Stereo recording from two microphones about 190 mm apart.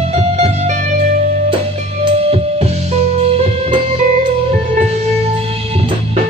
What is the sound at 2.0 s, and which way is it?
Music, 30° right (ahead or behind).